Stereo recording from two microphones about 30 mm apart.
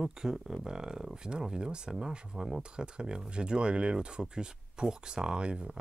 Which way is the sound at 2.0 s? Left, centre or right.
Centre.